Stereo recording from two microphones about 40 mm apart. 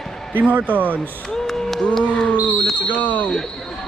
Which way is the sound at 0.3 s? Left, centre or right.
Right.